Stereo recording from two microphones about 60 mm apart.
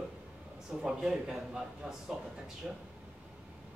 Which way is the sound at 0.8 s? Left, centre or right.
Centre.